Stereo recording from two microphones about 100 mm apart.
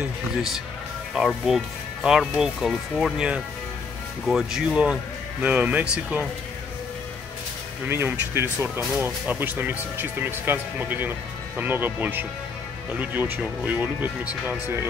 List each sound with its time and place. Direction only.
1.1 s speech: centre (ahead or behind)
7.9 s speech: 20° right (ahead or behind)